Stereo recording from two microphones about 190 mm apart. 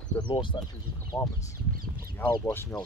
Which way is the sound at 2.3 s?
15° left (ahead or behind).